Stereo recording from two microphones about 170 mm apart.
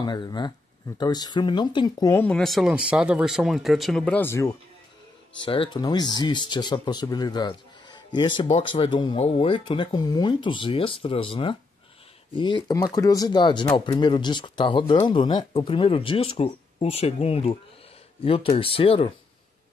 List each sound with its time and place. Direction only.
0.0 s speech: 25° left (ahead or behind)
2.1 s speech: 5° left (ahead or behind)
5.4 s speech: 30° left (ahead or behind)